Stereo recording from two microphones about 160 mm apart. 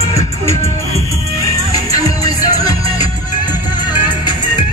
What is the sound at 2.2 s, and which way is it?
Music, 25° left (ahead or behind).